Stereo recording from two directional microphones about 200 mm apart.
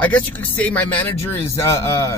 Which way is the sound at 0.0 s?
10° left (ahead or behind).